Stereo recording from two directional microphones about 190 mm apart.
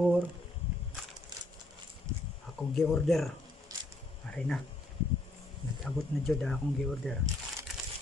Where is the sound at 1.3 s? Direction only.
20° right (ahead or behind).